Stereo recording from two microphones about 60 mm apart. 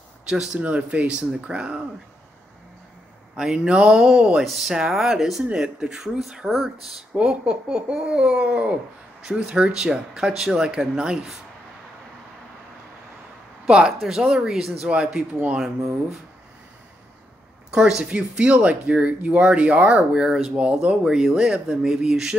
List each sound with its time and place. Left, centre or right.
0.3 s speech: centre
0.6 s speech: right
3.3 s speech: centre
4.5 s speech: centre
7.2 s speech: centre
13.7 s speech: centre
17.6 s speech: centre
21.0 s speech: centre